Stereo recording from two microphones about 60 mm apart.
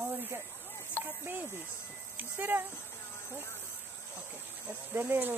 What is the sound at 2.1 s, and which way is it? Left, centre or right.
Speech, right.